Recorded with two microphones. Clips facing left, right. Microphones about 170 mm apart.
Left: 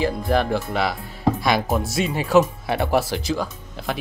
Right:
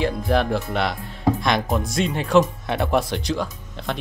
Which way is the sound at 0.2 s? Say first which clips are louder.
Even; centre (ahead or behind).